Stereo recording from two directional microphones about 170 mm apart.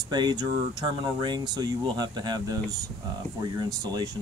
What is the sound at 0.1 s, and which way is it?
Speech, 25° right (ahead or behind).